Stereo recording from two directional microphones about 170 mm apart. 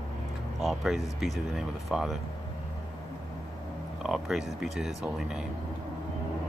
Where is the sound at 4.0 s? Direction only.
5° right (ahead or behind).